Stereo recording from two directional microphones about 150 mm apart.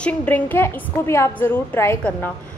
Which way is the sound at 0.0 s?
10° left (ahead or behind).